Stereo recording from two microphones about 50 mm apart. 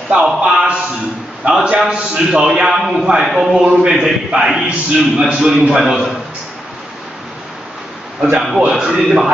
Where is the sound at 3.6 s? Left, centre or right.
Right.